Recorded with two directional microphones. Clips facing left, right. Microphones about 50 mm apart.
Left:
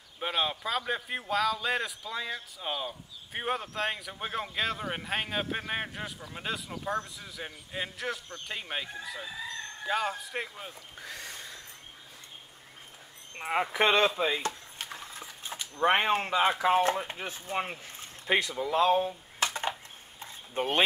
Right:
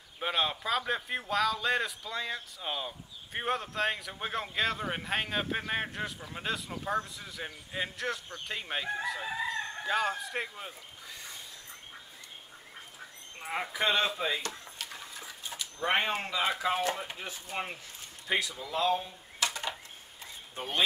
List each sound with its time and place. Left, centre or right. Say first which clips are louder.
0.2 s speech: even; centre
9.8 s speech: even; centre
11.0 s a sound: left 4 dB; left
13.4 s speech: left 6 dB; left
13.7 s speech: left 4 dB; left
14.2 s chop: left 3 dB; left
15.5 s speech: left 4 dB; left
20.5 s speech: left 6 dB; left